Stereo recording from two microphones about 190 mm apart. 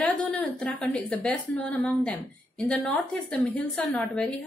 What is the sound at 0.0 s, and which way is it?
A woman's voice, 5° left (ahead or behind).